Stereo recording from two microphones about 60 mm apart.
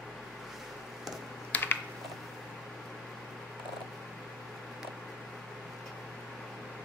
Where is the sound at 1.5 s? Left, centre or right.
Left.